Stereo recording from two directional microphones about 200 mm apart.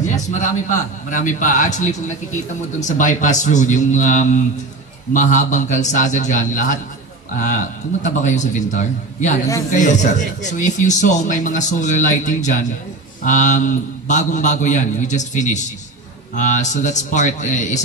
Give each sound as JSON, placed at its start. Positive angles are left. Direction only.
{"t": 0.0, "sound": "a man's voice", "side_deg": 40}